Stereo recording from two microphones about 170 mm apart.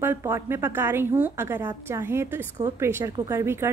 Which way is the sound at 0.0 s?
15° right (ahead or behind).